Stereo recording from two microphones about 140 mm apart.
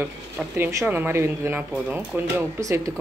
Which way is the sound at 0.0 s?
15° right (ahead or behind).